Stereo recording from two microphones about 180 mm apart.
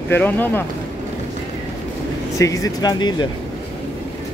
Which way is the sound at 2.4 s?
20° left (ahead or behind).